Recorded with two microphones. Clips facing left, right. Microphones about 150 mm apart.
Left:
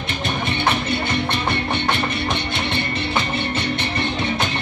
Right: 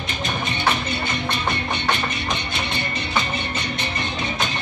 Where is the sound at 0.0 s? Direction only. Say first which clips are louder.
Left 2 dB; 60° left (ahead or behind).